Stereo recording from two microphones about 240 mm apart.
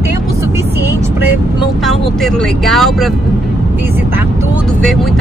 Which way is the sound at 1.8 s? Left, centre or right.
Centre.